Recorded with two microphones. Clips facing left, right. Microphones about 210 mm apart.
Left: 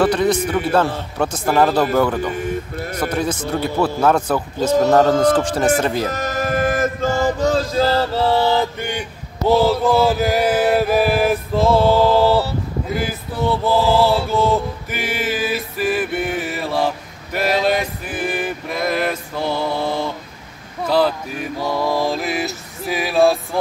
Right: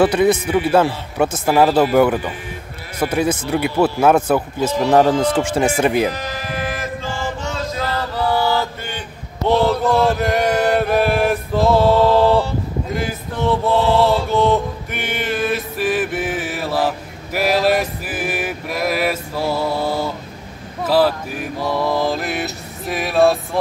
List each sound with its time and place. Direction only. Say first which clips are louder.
0.0 s a man's voice: right 2 dB; 10° right (ahead or behind)
6.0 s mantra: left 2 dB; 45° left (ahead or behind); by 9.0 s 15° left (ahead or behind)
9.5 s mantra: left 1 dB; centre (ahead or behind)